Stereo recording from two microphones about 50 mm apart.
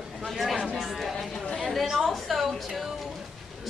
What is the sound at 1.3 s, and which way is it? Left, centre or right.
Chatter, centre.